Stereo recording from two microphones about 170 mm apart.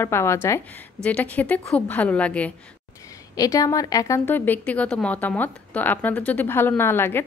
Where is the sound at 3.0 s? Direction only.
20° left (ahead or behind).